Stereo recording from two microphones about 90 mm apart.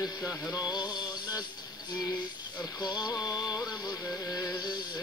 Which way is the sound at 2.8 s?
50° left (ahead or behind).